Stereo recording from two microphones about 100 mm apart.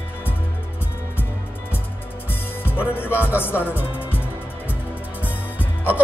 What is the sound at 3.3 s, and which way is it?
Music, 20° left (ahead or behind).